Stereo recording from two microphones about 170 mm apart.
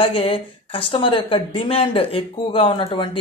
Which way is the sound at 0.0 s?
35° left (ahead or behind).